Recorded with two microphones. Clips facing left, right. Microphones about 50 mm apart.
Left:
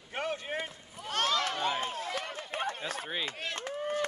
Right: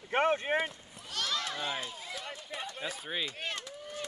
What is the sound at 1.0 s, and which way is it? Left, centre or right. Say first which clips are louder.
Run: left 6 dB; left.